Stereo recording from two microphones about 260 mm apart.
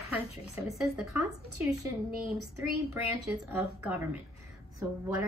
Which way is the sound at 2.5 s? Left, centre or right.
Centre.